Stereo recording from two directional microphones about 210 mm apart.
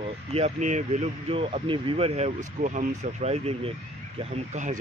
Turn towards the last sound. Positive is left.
turn(degrees=-35)  # may be behind; listen again after turning